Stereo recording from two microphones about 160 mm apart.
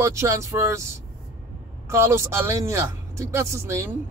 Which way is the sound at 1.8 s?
15° right (ahead or behind).